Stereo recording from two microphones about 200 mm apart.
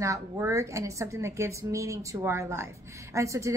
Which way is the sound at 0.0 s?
15° right (ahead or behind).